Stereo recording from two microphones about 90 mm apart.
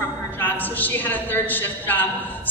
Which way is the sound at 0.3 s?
20° left (ahead or behind).